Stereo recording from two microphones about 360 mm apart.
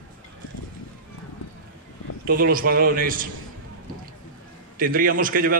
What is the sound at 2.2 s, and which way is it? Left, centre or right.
A man's voice, right.